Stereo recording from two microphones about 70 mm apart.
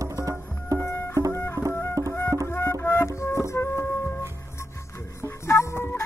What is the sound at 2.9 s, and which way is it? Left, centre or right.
Music, left.